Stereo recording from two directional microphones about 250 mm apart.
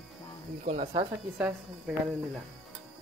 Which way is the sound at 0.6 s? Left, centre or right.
Right.